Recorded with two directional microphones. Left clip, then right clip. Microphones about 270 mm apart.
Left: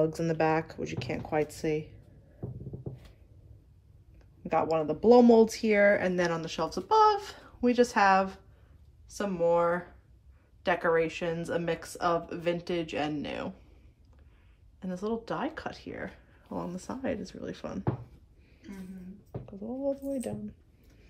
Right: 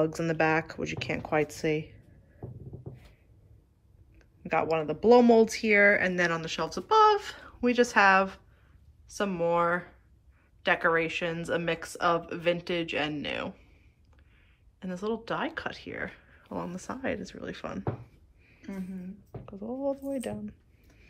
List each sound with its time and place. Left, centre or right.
0.0 s speech: centre
4.4 s speech: centre
14.8 s speech: centre
19.4 s speech: centre